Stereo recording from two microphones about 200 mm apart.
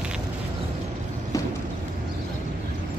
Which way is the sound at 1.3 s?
15° left (ahead or behind).